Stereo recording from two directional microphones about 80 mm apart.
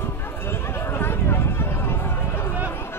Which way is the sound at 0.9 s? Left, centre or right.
Left.